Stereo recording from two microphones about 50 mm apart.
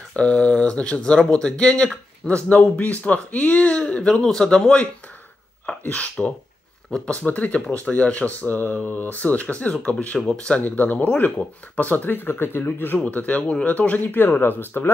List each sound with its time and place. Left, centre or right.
0.1 s speech: left
4.1 s a man's voice: centre
5.7 s speech: left
10.1 s a man's voice: centre
10.6 s speech: left
13.0 s speech: left
13.4 s speech: left
13.7 s speech: left
14.0 s speech: left